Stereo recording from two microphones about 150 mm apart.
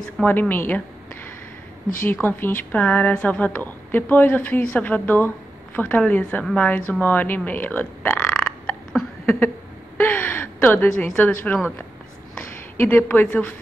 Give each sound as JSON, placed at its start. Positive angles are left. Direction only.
{"t": 0.0, "sound": "a woman's voice", "side_deg": 10}
{"t": 6.9, "sound": "a sound", "side_deg": 10}
{"t": 9.9, "sound": "gasp", "side_deg": 15}
{"t": 11.5, "sound": "a woman's voice", "side_deg": 10}